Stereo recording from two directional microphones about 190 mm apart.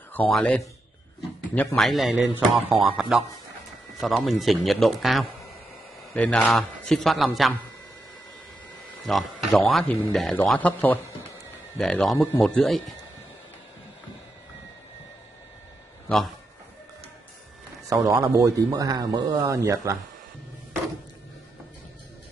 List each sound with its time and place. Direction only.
0.3 s a man's voice: 5° left (ahead or behind)
2.4 s speech: 30° right (ahead or behind)
3.0 s a man's voice: 5° right (ahead or behind)
9.0 s a man's voice: centre (ahead or behind)
17.8 s a man's voice: 20° right (ahead or behind)